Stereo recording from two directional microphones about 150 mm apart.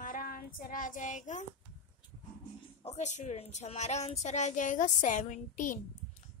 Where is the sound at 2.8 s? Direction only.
45° left (ahead or behind).